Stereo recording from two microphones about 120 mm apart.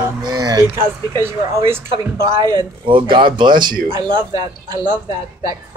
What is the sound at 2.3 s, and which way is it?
Speech, 40° right (ahead or behind).